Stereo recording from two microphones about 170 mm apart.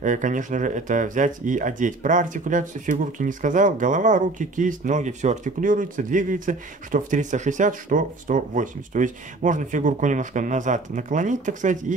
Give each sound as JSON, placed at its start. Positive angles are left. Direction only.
{"t": 0.0, "sound": "speech", "side_deg": -50}